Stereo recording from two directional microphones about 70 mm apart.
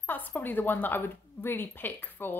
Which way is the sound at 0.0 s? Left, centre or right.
Left.